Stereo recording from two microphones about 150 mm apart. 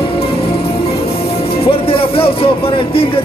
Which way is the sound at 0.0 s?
40° left (ahead or behind).